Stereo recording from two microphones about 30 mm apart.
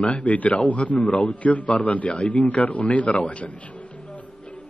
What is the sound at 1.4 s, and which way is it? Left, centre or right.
A man's voice, left.